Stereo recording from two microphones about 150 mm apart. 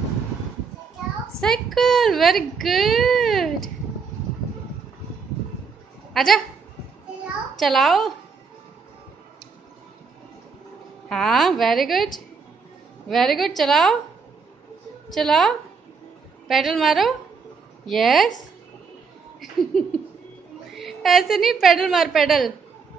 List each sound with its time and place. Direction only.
1.4 s a woman's voice: centre (ahead or behind)
6.1 s speech: centre (ahead or behind)
7.5 s a woman's voice: centre (ahead or behind)
11.1 s a woman's voice: centre (ahead or behind)
13.1 s a woman's voice: centre (ahead or behind)
15.0 s a woman's voice: 5° left (ahead or behind)
19.4 s a sound: centre (ahead or behind)
20.7 s a woman's voice: centre (ahead or behind)